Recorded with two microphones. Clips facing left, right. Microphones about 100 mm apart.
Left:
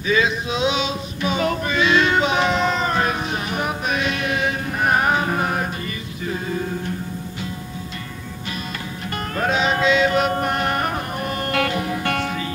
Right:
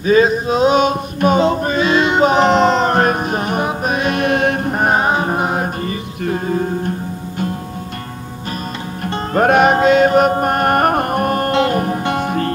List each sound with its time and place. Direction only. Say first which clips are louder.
0.0 s a sound: right 8 dB; 40° right (ahead or behind)
1.6 s music: right 4 dB; 40° right (ahead or behind)
2.9 s music: right 7 dB; 50° right (ahead or behind)
4.8 s music: right 2 dB; 25° right (ahead or behind)
6.2 s a sound: right 7 dB; 50° right (ahead or behind)
9.3 s music: right 9 dB; 55° right (ahead or behind)
12.0 s music: right 4 dB; 20° right (ahead or behind)
12.3 s music: right 8 dB; 55° right (ahead or behind)